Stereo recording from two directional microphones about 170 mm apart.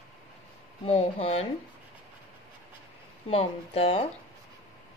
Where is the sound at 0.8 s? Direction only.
35° left (ahead or behind).